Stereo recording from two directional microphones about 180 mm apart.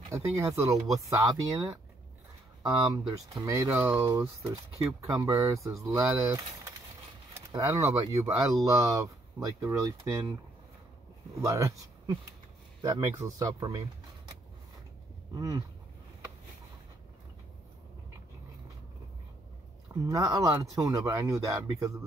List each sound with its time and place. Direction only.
0.1 s speech: 15° right (ahead or behind)
3.1 s speech: 20° right (ahead or behind)
11.4 s speech: 15° right (ahead or behind)
15.3 s speech: 20° right (ahead or behind)
19.9 s speech: 20° right (ahead or behind)